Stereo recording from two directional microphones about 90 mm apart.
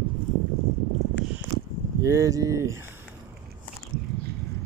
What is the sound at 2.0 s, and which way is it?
Speech, 35° right (ahead or behind).